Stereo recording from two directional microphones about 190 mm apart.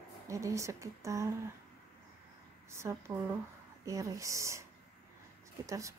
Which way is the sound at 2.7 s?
15° right (ahead or behind).